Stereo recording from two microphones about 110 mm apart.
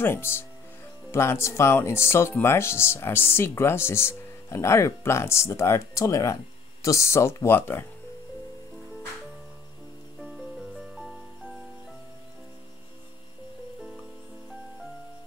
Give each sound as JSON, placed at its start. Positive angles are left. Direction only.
{"t": 0.0, "sound": "speech", "side_deg": 20}
{"t": 11.0, "sound": "music", "side_deg": 0}